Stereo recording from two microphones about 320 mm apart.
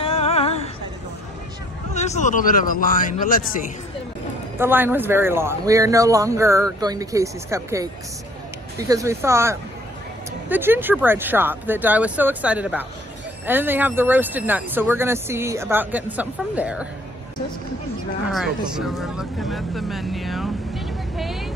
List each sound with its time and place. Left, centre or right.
0.0 s a sound: centre
2.0 s speech: left
4.6 s speech: centre
18.7 s speech: centre
21.2 s vehicle: centre